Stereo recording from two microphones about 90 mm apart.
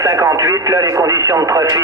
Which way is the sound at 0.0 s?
40° right (ahead or behind).